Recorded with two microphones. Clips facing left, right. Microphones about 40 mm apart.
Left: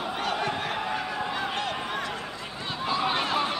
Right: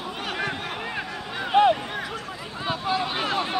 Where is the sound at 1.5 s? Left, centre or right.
Right.